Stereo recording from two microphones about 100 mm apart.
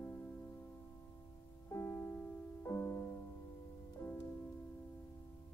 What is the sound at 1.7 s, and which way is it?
Music, 25° left (ahead or behind).